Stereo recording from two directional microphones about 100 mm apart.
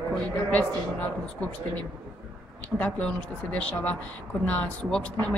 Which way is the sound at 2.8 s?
15° left (ahead or behind).